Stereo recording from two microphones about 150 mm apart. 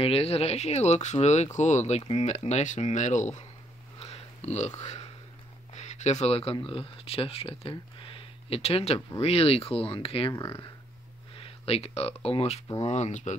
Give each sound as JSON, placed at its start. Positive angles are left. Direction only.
{"t": 0.0, "sound": "speech", "side_deg": 40}
{"t": 4.0, "sound": "a sound", "side_deg": 45}
{"t": 5.8, "sound": "speech", "side_deg": 50}
{"t": 10.3, "sound": "speech", "side_deg": 15}
{"t": 11.3, "sound": "speech", "side_deg": 40}